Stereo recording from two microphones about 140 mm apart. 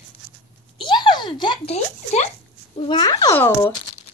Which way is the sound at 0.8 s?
35° left (ahead or behind).